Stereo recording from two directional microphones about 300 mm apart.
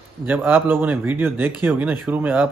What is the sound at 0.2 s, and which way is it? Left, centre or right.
Speech, centre.